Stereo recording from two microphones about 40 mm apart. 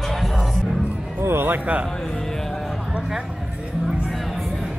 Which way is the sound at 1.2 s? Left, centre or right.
Right.